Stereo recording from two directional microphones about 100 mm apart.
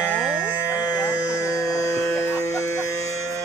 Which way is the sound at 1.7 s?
25° left (ahead or behind).